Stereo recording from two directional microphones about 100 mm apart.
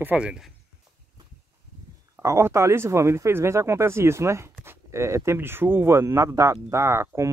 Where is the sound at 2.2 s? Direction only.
30° right (ahead or behind).